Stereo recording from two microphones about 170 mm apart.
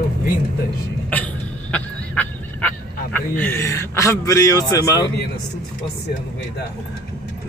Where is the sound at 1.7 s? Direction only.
10° left (ahead or behind); by 5.1 s 25° left (ahead or behind).